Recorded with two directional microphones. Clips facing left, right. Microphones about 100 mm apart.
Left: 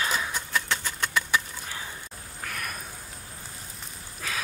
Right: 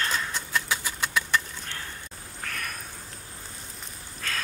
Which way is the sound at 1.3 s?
5° left (ahead or behind).